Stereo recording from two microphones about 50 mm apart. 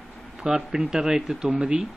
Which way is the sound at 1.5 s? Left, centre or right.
Right.